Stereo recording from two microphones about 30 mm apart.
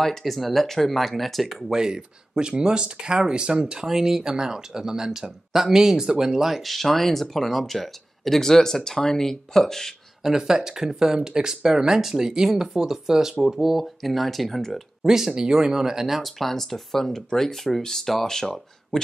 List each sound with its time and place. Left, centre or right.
0.0 s speech: centre
1.7 s speech: right
3.8 s speech: centre
6.5 s speech: centre
10.2 s speech: centre
14.7 s speech: centre
16.2 s speech: centre